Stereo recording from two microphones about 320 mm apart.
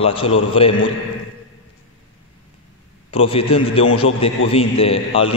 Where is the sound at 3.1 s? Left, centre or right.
Centre.